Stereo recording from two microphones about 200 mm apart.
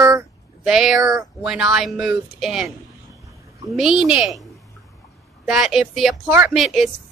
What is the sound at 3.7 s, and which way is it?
Speech, centre (ahead or behind).